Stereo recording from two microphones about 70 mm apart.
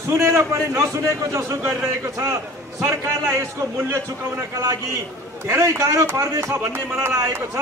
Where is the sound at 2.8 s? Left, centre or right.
Right.